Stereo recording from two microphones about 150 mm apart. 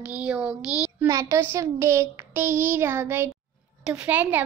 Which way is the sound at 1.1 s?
20° right (ahead or behind).